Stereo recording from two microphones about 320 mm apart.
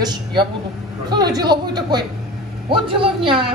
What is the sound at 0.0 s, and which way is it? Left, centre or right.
A woman's voice, centre.